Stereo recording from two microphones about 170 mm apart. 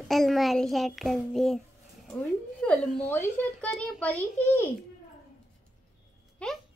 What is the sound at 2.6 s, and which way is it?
Speech, 5° left (ahead or behind).